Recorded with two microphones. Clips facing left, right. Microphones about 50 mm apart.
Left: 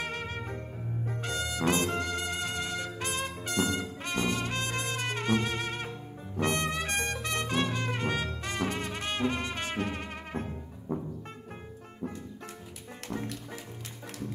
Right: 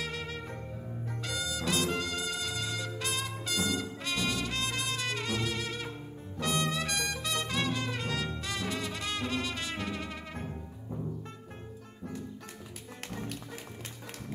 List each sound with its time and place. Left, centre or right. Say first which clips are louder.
0.0 s music: left 2 dB; left
1.2 s brass instrument: left 4 dB; left
10.9 s music: left 6 dB; left
13.1 s music: left 5 dB; left